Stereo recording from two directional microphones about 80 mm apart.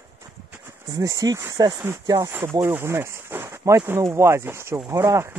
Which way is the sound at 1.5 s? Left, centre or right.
Right.